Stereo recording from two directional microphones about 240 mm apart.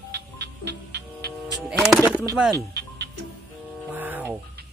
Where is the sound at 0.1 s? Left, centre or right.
Right.